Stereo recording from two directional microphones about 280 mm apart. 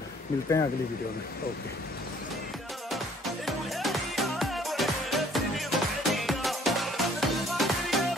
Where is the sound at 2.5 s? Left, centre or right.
Centre.